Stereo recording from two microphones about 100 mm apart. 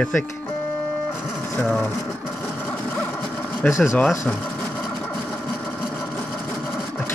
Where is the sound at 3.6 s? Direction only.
15° left (ahead or behind).